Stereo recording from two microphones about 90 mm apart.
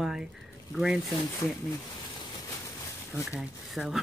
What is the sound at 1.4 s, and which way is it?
Speech, 40° left (ahead or behind).